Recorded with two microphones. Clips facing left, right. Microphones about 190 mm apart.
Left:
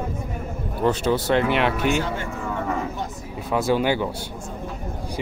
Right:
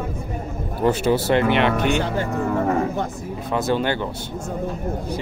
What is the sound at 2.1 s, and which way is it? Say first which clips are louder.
Speech: right 6 dB; 35° right (ahead or behind).